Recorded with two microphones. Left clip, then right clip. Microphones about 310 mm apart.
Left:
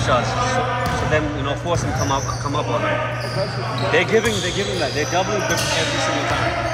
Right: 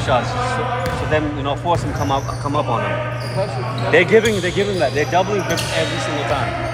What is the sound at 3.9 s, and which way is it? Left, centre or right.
Speech, right.